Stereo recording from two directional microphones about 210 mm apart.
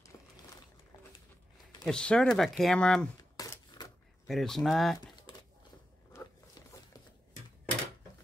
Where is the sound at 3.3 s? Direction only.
15° left (ahead or behind).